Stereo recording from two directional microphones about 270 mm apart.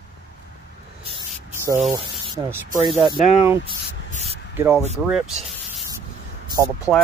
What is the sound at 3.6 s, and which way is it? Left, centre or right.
Spray, right.